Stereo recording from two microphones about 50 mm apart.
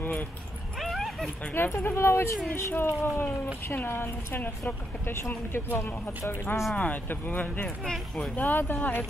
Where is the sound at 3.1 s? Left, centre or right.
Left.